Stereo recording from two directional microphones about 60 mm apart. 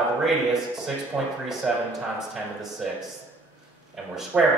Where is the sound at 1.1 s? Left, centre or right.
Centre.